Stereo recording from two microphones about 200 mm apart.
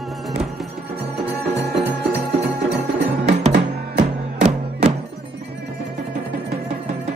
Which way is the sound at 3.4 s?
35° right (ahead or behind).